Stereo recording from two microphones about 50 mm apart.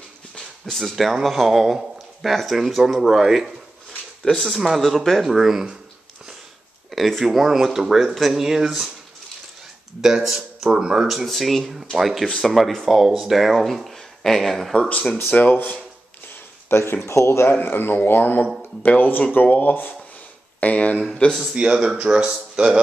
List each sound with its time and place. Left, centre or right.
0.7 s speech: centre
4.2 s speech: centre
6.9 s speech: centre
10.0 s speech: centre
11.1 s speech: centre
15.1 s speech: left
16.6 s speech: left
17.5 s speech: left
21.5 s speech: centre